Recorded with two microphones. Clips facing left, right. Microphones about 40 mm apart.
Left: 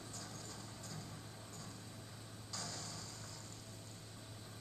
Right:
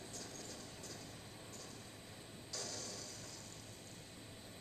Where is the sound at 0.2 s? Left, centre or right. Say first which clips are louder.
Even; left.